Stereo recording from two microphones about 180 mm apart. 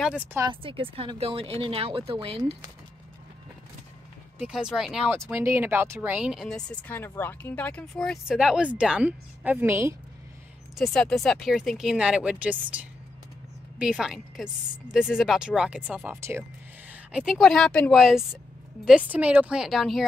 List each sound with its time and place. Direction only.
0.0 s a woman's voice: 10° right (ahead or behind)
0.5 s speech: 30° right (ahead or behind)
4.4 s speech: 5° right (ahead or behind)
5.3 s a woman's voice: 10° right (ahead or behind)
10.8 s speech: 5° left (ahead or behind)